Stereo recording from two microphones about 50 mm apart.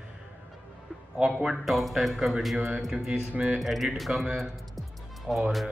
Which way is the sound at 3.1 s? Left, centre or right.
Right.